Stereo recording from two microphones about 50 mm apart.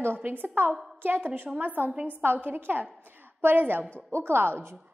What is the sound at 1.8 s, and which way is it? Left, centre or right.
Speech, right.